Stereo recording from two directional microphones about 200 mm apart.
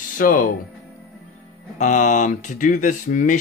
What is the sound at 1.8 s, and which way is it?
Speech, 40° left (ahead or behind).